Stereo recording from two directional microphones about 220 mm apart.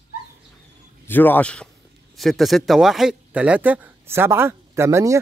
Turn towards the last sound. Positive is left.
turn(degrees=-10)  # may be behind; listen again after turning